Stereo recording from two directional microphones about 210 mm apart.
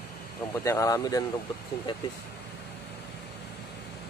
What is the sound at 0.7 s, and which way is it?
Speech, 15° left (ahead or behind).